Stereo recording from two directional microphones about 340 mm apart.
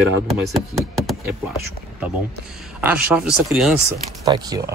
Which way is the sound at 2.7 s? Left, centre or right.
Centre.